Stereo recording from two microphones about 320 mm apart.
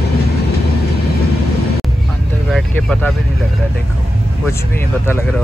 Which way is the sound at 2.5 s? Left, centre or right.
Centre.